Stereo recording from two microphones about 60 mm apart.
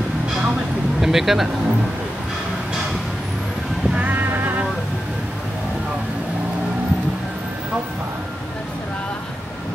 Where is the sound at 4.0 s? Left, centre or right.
Right.